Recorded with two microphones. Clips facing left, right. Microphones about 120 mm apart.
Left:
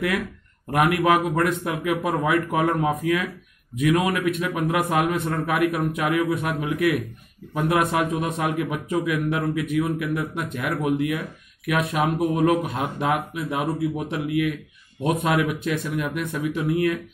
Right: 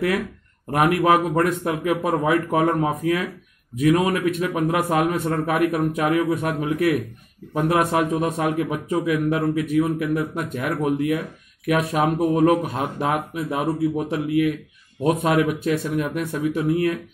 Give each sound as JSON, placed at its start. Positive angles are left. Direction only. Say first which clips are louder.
{"t": 0.7, "sound": "a man's voice", "louder": "right 2 dB", "side_deg": -35}